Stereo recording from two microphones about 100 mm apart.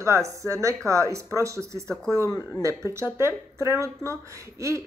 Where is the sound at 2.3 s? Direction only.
40° left (ahead or behind).